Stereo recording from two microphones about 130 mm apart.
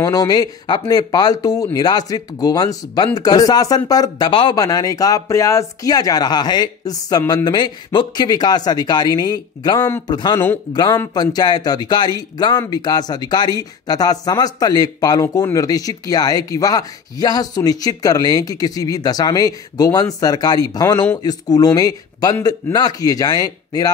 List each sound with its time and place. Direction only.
0.0 s speech: 30° left (ahead or behind)
4.6 s speech: 25° left (ahead or behind)